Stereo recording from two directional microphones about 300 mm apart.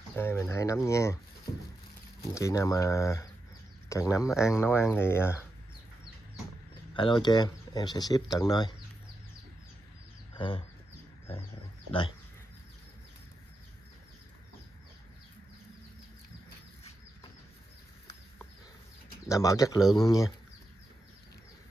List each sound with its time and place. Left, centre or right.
0.1 s speech: centre
2.3 s speech: centre
6.9 s speech: centre
10.3 s speech: centre
19.2 s speech: centre